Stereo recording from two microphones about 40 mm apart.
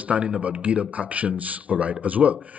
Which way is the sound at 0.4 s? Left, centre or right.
Right.